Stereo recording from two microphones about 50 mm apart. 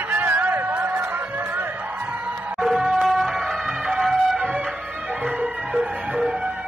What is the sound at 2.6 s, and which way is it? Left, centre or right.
Music, centre.